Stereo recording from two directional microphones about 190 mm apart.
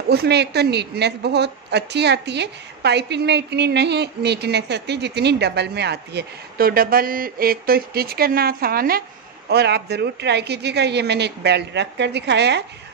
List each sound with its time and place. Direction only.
0.1 s a woman's voice: 60° right (ahead or behind)